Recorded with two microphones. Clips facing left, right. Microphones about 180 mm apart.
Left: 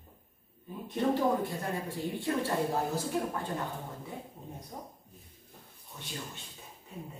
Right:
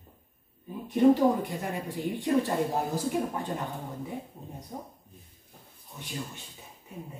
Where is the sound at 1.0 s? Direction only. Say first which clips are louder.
Right 7 dB; 15° right (ahead or behind).